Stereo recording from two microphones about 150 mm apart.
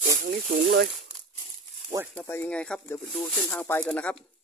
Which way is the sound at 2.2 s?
15° left (ahead or behind).